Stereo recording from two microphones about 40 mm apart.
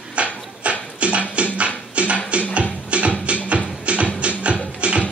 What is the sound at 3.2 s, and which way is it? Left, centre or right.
Music, right.